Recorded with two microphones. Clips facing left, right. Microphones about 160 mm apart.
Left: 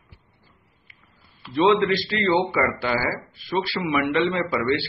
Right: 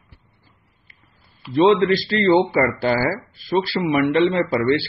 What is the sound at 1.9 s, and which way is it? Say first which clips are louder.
A man's voice: right 5 dB; 35° right (ahead or behind).